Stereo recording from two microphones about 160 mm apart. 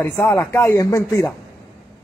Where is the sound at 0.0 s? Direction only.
15° left (ahead or behind).